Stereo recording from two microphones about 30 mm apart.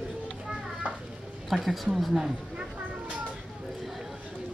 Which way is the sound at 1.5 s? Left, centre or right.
Centre.